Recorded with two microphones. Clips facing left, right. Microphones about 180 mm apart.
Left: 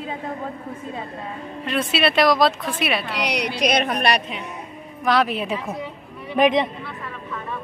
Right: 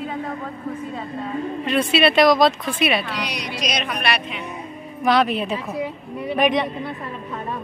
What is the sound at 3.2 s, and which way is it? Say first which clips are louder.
A woman's voice: left 5 dB; 65° left (ahead or behind).